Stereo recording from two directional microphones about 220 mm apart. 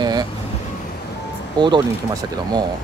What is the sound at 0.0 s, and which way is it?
Vehicle, 20° right (ahead or behind).